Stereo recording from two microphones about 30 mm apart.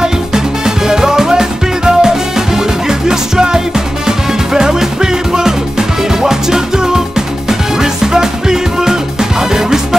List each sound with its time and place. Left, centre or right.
0.0 s music: centre